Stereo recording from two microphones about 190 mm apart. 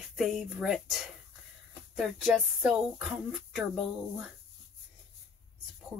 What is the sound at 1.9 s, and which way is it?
Speech, 5° right (ahead or behind).